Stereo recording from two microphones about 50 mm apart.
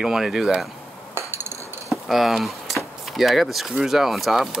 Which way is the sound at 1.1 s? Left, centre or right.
Right.